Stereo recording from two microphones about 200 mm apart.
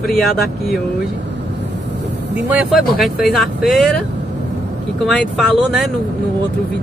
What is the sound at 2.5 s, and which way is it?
Speech, 5° right (ahead or behind).